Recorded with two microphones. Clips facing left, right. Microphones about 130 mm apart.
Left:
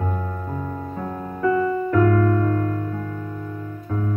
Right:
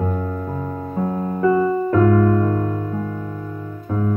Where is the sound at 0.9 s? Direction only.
25° right (ahead or behind).